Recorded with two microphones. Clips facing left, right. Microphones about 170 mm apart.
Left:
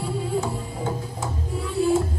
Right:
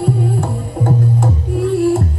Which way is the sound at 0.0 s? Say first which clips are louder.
Right 7 dB; 60° right (ahead or behind).